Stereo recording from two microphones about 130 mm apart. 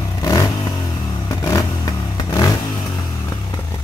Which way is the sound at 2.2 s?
25° left (ahead or behind).